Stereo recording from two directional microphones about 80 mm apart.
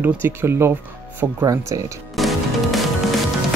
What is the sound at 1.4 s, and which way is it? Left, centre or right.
Speech, right.